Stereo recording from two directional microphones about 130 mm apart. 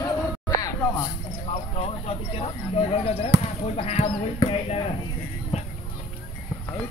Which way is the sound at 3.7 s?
50° left (ahead or behind).